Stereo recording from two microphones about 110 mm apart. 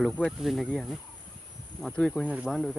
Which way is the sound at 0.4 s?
Centre (ahead or behind).